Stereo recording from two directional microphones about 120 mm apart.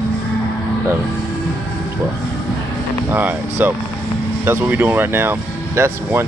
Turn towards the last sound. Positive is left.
turn(degrees=-20)  # may be behind; listen again after turning